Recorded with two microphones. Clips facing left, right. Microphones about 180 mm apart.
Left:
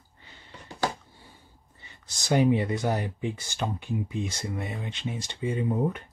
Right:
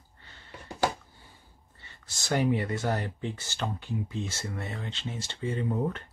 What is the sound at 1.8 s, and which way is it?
Speech, 15° left (ahead or behind).